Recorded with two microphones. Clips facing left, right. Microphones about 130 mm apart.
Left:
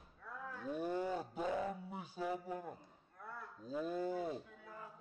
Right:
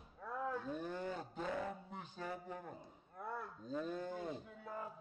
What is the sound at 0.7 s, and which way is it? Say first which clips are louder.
Roaring cats: left 4 dB; 10° left (ahead or behind).